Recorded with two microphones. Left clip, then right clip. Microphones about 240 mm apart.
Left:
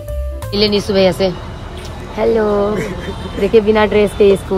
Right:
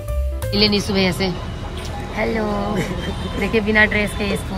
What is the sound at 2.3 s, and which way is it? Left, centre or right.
Speech, right.